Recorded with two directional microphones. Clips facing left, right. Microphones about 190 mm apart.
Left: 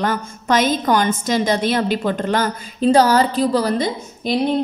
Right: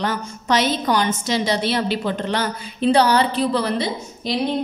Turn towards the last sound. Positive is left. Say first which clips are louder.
# left 3 dB
turn(degrees=45)  # may be behind; listen again after turning